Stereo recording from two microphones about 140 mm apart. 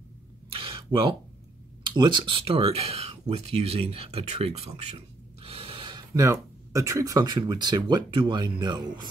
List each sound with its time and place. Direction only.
0.5 s a sound: 40° right (ahead or behind)
1.8 s speech: 35° right (ahead or behind)
5.4 s snort: 40° right (ahead or behind)
6.1 s speech: 20° right (ahead or behind)